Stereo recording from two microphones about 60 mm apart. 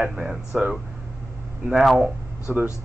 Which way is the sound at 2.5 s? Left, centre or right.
Right.